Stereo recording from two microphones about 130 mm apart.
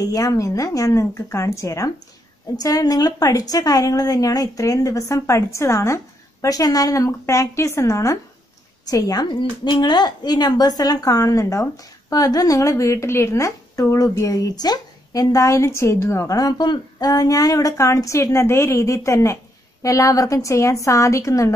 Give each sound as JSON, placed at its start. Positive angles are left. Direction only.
{"t": 0.0, "sound": "a woman's voice", "side_deg": 25}